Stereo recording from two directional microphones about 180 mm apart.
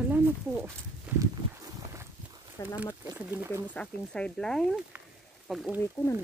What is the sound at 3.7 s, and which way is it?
Speech, 5° left (ahead or behind).